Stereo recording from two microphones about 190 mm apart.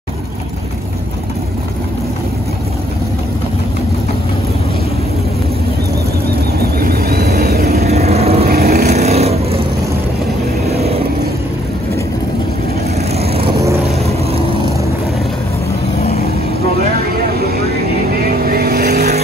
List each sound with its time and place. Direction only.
6.8 s vehicle: 55° right (ahead or behind)
7.9 s vehicle: 35° right (ahead or behind)
8.5 s vehicle: 55° right (ahead or behind)
8.9 s vehicle: 35° right (ahead or behind)
10.7 s vehicle: 35° right (ahead or behind)
13.2 s vehicle: 30° right (ahead or behind)
16.0 s vehicle: 35° left (ahead or behind)
17.1 s vehicle: 55° right (ahead or behind)